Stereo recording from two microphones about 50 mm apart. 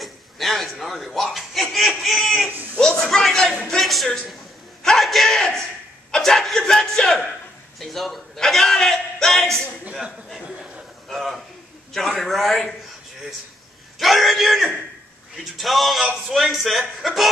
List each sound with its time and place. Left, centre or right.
0.0 s chuckle: centre
2.5 s a man's voice: right
3.0 s a man's voice: centre
7.8 s a man's voice: centre
11.1 s a man's voice: centre
13.9 s a man's voice: centre